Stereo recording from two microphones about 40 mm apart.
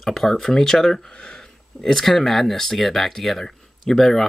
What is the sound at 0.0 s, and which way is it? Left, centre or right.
Speech, centre.